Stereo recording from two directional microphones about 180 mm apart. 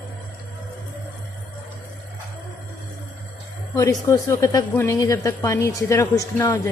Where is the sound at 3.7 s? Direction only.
15° left (ahead or behind).